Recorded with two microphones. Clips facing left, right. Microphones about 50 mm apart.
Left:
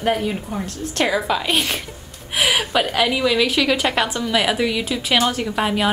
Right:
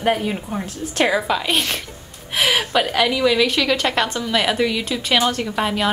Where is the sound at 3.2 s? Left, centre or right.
Centre.